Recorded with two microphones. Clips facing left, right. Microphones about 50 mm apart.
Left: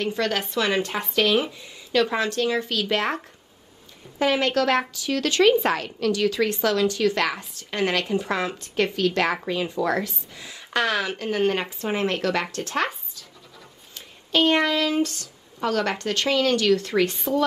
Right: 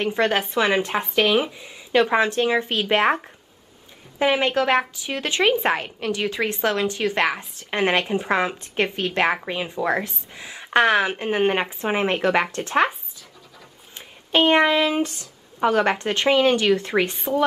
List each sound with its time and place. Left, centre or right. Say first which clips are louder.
0.0 s speech: right 4 dB; right
4.2 s speech: right 1 dB; right